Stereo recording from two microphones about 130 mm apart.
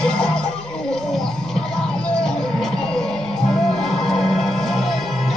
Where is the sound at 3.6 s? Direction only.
5° left (ahead or behind).